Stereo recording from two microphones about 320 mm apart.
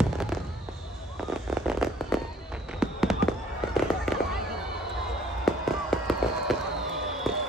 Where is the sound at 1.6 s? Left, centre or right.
Centre.